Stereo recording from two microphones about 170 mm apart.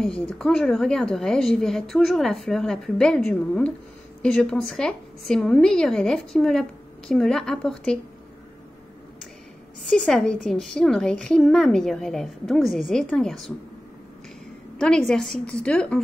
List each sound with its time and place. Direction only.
0.0 s a woman's voice: centre (ahead or behind)
9.8 s a woman's voice: 5° left (ahead or behind)
15.0 s a woman's voice: 5° left (ahead or behind)